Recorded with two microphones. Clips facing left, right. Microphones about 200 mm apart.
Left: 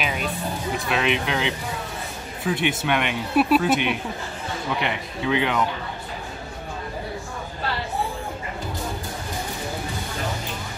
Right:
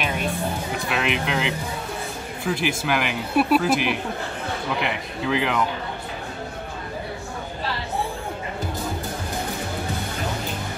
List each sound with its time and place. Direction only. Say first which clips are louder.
0.7 s speech: left 3 dB; centre (ahead or behind)